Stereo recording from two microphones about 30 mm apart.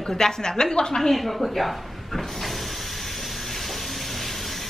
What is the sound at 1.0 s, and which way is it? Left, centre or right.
A woman's voice, centre.